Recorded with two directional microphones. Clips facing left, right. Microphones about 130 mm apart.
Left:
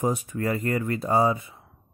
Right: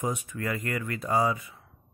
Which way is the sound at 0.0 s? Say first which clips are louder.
Left 5 dB; 30° left (ahead or behind).